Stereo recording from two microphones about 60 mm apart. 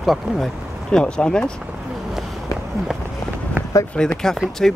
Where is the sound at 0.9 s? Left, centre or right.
Centre.